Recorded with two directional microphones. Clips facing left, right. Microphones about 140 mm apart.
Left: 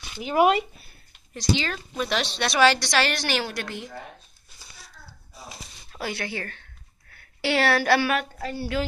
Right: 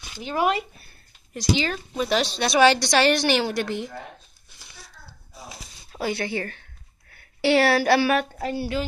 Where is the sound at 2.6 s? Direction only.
20° right (ahead or behind).